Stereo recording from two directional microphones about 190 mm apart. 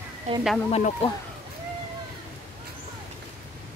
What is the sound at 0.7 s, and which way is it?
Speech, 30° left (ahead or behind).